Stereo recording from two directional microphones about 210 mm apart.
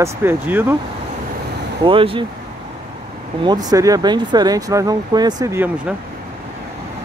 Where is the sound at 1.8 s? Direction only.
25° right (ahead or behind).